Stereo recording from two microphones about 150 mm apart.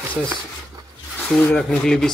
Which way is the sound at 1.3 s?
5° left (ahead or behind).